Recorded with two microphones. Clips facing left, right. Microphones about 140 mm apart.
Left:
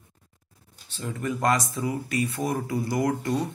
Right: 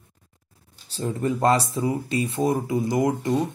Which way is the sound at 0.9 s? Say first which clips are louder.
Right 5 dB; 30° right (ahead or behind).